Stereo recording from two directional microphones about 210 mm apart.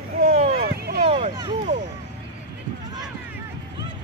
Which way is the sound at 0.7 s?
50° right (ahead or behind).